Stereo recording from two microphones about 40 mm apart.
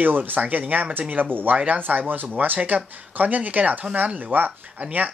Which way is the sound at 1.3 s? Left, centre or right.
Right.